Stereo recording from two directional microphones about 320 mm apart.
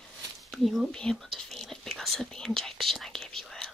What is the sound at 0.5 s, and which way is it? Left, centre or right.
Whispering, centre.